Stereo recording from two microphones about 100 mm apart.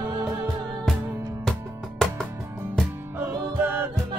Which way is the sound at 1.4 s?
5° left (ahead or behind).